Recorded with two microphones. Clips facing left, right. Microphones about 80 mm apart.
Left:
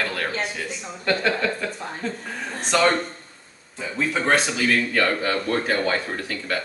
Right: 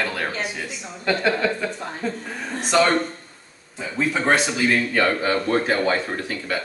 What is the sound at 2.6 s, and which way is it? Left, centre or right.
Speech, centre.